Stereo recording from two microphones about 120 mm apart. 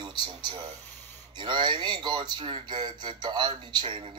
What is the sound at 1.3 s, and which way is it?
Speech, 40° right (ahead or behind).